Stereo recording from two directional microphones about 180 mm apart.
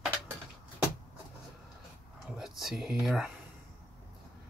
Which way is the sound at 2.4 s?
Centre (ahead or behind).